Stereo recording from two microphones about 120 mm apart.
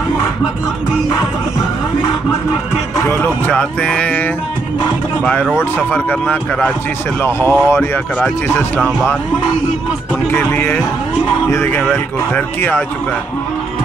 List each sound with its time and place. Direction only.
3.4 s speech: 10° left (ahead or behind)
5.2 s speech: 15° left (ahead or behind)
10.3 s speech: 20° left (ahead or behind)